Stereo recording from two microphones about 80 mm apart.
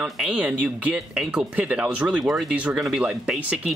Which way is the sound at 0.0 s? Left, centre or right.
Centre.